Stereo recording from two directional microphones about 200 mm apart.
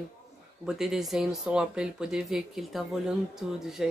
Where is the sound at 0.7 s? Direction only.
Centre (ahead or behind).